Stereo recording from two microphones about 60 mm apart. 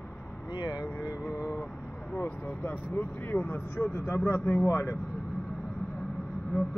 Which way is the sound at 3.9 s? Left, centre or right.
Left.